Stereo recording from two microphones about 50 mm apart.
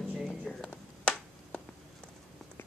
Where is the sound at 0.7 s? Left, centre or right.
Left.